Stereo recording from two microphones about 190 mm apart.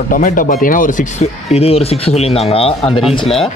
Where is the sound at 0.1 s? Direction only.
45° left (ahead or behind).